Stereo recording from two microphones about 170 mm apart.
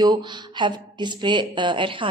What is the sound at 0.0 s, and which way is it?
Speech, 25° right (ahead or behind).